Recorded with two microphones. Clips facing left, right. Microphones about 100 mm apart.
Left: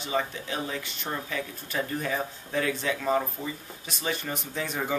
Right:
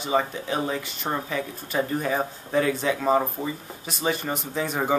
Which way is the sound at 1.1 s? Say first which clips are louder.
Right 6 dB; 40° right (ahead or behind).